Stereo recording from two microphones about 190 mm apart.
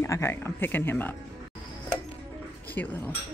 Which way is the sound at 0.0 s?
15° left (ahead or behind).